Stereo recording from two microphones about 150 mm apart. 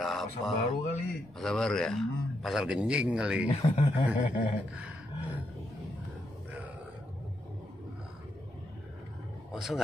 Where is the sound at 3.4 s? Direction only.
40° left (ahead or behind).